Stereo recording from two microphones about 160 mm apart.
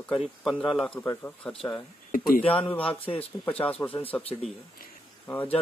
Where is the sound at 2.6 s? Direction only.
10° left (ahead or behind).